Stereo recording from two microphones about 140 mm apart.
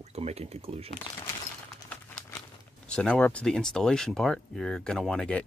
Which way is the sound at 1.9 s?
10° left (ahead or behind).